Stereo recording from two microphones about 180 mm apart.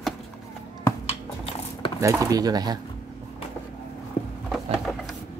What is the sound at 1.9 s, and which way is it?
Speech, 15° right (ahead or behind).